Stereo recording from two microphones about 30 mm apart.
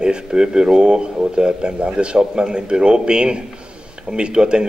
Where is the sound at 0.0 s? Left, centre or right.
Right.